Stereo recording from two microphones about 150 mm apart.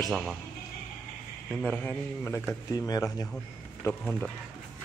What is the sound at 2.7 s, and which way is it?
Speech, 25° left (ahead or behind).